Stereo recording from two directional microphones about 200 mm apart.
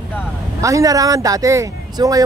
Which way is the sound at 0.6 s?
15° right (ahead or behind).